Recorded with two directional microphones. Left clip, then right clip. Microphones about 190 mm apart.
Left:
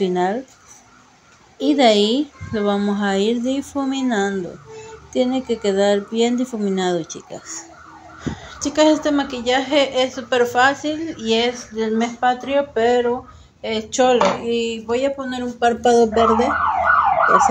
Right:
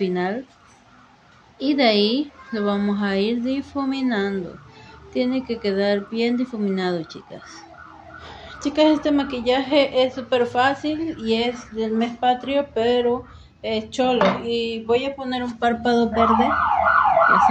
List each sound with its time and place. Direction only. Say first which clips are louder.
0.0 s a woman's voice: left 4 dB; 10° left (ahead or behind)
1.6 s a woman's voice: left 4 dB; 15° left (ahead or behind)
15.6 s speech: left 6 dB; 30° left (ahead or behind)